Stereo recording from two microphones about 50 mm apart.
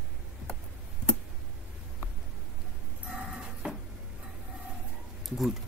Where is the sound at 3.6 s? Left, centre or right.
Right.